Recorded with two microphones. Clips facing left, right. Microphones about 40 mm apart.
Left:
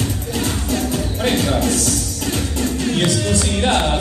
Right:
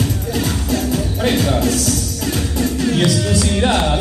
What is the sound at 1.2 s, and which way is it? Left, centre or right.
Speech, centre.